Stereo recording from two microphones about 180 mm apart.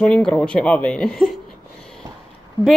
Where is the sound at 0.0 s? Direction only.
5° left (ahead or behind).